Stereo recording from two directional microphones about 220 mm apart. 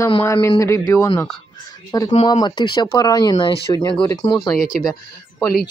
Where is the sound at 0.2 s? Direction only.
10° left (ahead or behind).